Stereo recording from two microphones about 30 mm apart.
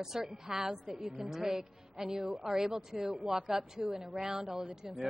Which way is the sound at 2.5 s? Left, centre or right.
Centre.